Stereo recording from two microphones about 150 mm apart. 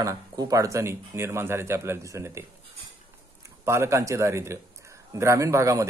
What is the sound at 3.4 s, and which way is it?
Speech, 20° right (ahead or behind).